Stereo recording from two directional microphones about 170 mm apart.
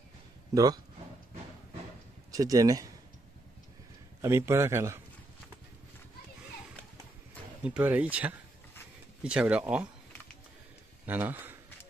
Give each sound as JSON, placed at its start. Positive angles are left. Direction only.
{"t": 2.3, "sound": "speech", "side_deg": -20}
{"t": 4.2, "sound": "speech", "side_deg": -15}
{"t": 7.6, "sound": "speech", "side_deg": -10}
{"t": 11.1, "sound": "speech", "side_deg": -10}